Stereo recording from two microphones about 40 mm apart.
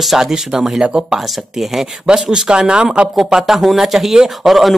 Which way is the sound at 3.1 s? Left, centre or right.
Centre.